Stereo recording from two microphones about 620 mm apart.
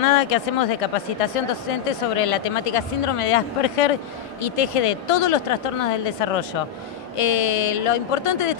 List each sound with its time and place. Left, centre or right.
0.0 s speech: left